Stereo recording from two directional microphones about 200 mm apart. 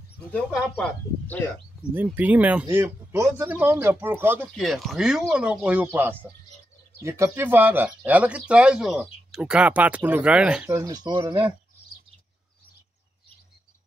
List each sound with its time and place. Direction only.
0.3 s speech: 5° left (ahead or behind)
2.0 s speech: 10° right (ahead or behind)
4.6 s speech: centre (ahead or behind); by 11.3 s 20° right (ahead or behind)